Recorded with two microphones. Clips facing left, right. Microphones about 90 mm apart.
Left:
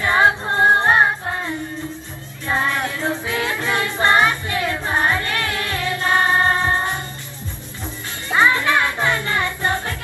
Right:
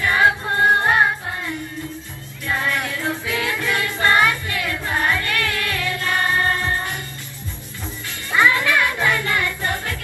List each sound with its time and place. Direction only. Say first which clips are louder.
0.0 s music: left 1 dB; 25° left (ahead or behind)
8.3 s music: left 1 dB; 25° left (ahead or behind)